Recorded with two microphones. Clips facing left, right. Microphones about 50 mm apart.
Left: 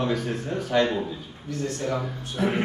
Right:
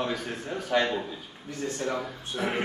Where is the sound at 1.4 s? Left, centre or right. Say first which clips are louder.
Left 3 dB; right.